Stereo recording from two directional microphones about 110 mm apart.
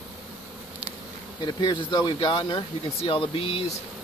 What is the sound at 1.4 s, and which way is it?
Speech, 40° left (ahead or behind).